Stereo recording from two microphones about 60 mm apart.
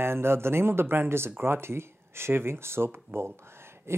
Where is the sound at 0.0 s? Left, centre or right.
Right.